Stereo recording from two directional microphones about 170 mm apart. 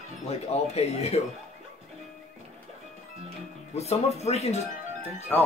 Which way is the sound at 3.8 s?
40° left (ahead or behind).